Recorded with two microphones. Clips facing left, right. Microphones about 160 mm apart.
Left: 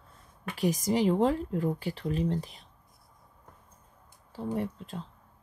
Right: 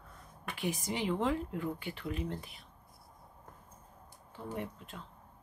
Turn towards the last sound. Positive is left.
turn(degrees=35)  # may be behind; listen again after turning